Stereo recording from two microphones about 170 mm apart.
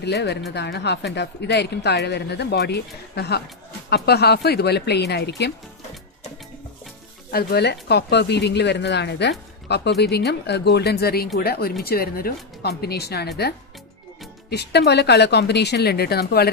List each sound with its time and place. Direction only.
0.0 s a woman's voice: 80° left
7.2 s a woman's voice: 70° left (ahead or behind)
14.5 s a woman's voice: 75° left (ahead or behind)